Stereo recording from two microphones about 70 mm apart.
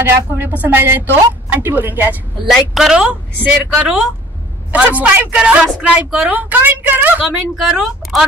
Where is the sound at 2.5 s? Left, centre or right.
Centre; by 7.1 s right.